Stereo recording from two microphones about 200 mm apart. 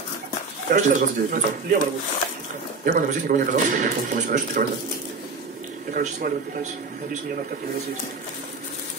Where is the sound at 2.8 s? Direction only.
40° right (ahead or behind).